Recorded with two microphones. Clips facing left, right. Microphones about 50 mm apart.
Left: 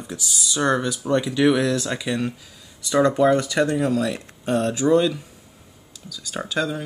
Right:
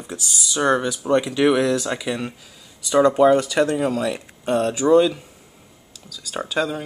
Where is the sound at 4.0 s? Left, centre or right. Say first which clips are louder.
Even; centre.